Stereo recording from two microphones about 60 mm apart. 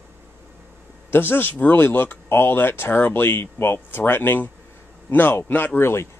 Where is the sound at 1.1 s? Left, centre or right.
Left.